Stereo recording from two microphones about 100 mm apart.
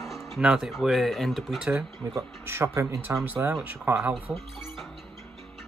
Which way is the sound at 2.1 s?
25° right (ahead or behind).